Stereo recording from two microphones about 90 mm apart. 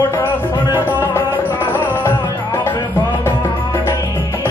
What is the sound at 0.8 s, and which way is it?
Music, 25° left (ahead or behind).